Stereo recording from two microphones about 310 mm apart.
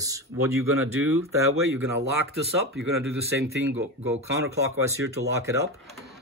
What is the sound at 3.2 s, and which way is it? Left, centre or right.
Speech, right.